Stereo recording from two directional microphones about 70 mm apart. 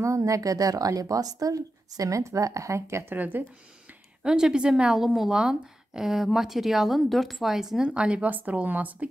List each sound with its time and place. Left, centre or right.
0.0 s a woman's voice: right
3.2 s speech: right
4.2 s a woman's voice: centre